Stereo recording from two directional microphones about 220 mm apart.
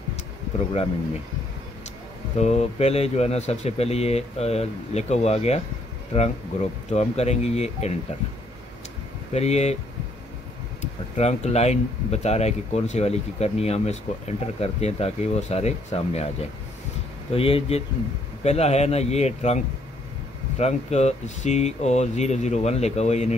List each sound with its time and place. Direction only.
2.3 s speech: 30° left (ahead or behind)
9.3 s speech: 30° left (ahead or behind)
11.1 s speech: 30° left (ahead or behind)